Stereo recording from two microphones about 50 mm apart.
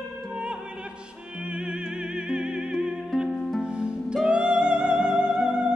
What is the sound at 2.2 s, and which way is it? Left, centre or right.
Music, centre.